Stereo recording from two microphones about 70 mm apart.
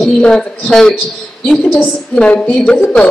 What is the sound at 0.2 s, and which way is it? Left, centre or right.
A woman's voice, centre.